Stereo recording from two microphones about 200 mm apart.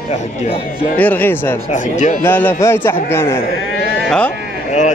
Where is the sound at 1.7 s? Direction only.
35° left (ahead or behind).